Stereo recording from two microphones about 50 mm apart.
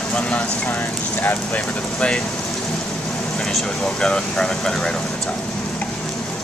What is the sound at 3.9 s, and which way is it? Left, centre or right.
Speech, centre.